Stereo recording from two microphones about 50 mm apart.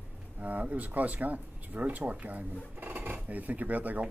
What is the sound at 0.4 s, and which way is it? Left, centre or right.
Speech, right.